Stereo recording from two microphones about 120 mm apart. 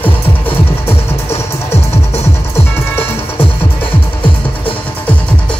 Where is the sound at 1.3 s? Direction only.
60° left (ahead or behind).